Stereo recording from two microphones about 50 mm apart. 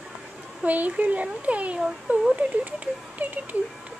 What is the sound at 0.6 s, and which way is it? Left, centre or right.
A child's voice, right.